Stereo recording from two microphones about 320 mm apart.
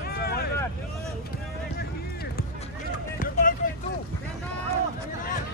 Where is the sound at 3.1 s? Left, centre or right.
Left.